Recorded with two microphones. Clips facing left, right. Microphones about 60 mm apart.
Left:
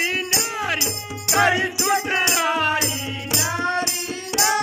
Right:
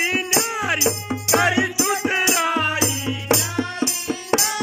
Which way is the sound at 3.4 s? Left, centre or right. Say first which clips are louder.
Left 3 dB; left.